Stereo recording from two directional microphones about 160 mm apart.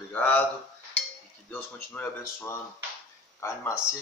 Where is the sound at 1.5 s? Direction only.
10° left (ahead or behind).